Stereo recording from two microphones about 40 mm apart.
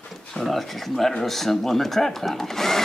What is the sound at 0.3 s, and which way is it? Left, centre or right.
Speech, centre.